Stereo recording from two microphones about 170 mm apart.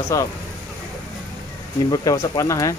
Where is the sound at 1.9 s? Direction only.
20° left (ahead or behind).